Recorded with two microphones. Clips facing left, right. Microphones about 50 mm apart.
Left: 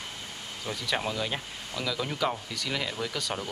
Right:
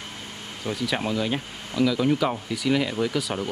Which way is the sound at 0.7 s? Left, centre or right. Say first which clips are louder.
Right 5 dB; centre.